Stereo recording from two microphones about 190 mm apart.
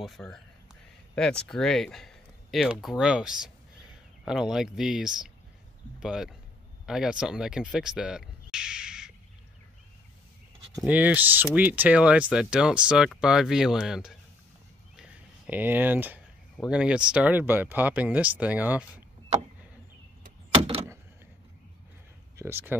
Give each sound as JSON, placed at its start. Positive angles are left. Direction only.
{"t": 0.0, "sound": "speech", "side_deg": 0}
{"t": 10.8, "sound": "speech", "side_deg": -10}
{"t": 15.0, "sound": "a sound", "side_deg": -5}
{"t": 16.5, "sound": "speech", "side_deg": -5}
{"t": 20.5, "sound": "door", "side_deg": -30}
{"t": 22.4, "sound": "speech", "side_deg": -10}